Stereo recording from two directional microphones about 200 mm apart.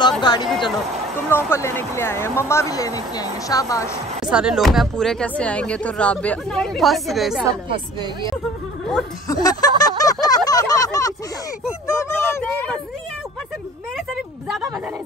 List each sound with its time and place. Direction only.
0.2 s speech: 20° left (ahead or behind)
4.3 s speech: 5° right (ahead or behind)
7.4 s a woman's voice: 25° right (ahead or behind)
9.3 s a sound: 20° left (ahead or behind)
11.9 s speech: 15° left (ahead or behind)